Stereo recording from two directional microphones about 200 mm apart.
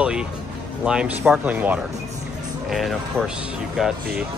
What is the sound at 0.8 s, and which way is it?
Speech, 5° right (ahead or behind).